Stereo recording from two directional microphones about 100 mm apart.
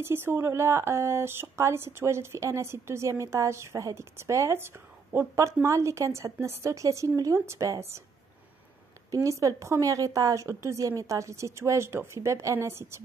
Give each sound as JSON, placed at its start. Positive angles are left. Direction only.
{"t": 0.0, "sound": "a woman's voice", "side_deg": -25}
{"t": 9.1, "sound": "a woman's voice", "side_deg": -30}